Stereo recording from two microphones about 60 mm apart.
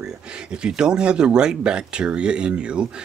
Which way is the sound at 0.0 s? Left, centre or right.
Centre.